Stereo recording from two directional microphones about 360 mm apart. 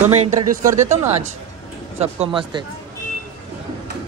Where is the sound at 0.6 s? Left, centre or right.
Centre.